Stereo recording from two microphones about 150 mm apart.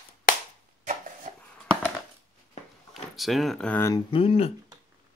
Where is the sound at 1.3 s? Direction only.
60° right (ahead or behind).